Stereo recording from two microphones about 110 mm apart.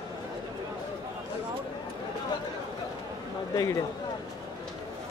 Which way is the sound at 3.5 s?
30° left (ahead or behind).